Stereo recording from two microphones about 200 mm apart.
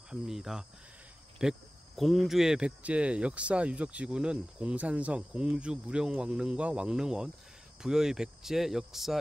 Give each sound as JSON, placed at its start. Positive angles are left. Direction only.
{"t": 0.1, "sound": "cricket", "side_deg": 0}